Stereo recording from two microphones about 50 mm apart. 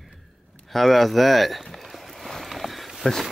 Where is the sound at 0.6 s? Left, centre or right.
Centre.